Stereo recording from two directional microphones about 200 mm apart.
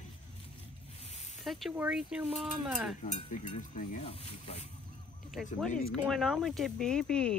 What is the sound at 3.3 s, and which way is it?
Speech, 40° left (ahead or behind).